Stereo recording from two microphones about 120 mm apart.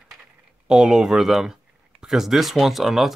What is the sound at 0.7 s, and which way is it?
Speech, 5° right (ahead or behind).